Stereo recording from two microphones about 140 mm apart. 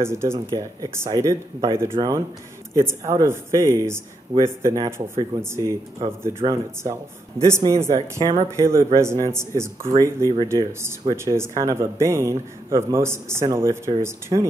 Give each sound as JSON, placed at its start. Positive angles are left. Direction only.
{"t": 0.0, "sound": "speech", "side_deg": -20}